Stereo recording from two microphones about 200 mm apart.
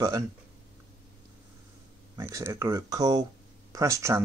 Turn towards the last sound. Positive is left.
turn(degrees=-15)  # may be behind; listen again after turning